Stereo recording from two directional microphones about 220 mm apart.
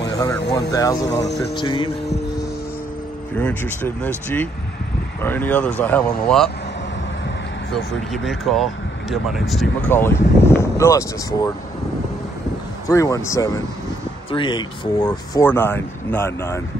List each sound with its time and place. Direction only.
0.0 s speech: 20° left (ahead or behind)
3.3 s speech: 10° left (ahead or behind)
5.2 s speech: 10° left (ahead or behind)
8.3 s speech: centre (ahead or behind)
12.8 s speech: 15° left (ahead or behind)